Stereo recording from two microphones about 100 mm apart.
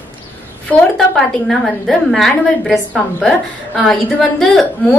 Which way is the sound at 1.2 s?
Centre (ahead or behind).